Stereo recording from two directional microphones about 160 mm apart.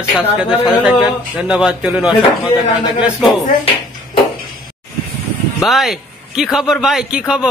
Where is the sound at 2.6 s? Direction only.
25° left (ahead or behind).